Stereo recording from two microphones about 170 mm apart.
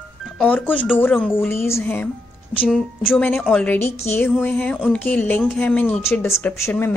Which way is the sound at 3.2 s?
10° left (ahead or behind).